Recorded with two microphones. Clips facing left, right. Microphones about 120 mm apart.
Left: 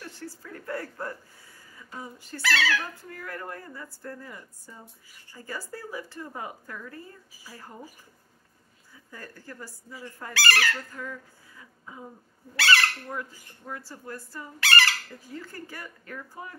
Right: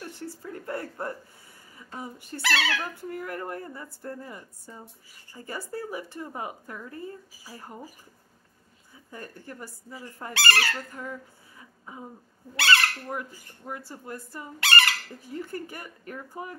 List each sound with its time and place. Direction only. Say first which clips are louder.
0.2 s a sound: right 3 dB; 25° right (ahead or behind)
2.2 s speech: left 1 dB; 25° right (ahead or behind)
9.1 s speech: right 2 dB; 20° right (ahead or behind)